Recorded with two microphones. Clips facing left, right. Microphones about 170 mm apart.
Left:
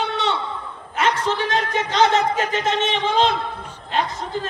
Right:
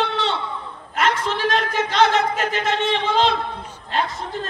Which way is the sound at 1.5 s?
60° right (ahead or behind).